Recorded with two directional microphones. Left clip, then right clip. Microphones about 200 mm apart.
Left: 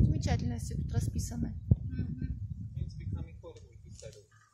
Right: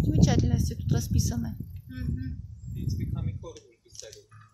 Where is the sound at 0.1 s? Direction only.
Centre (ahead or behind).